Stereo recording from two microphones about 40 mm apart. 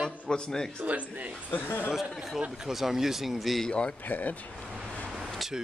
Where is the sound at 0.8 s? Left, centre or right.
Right.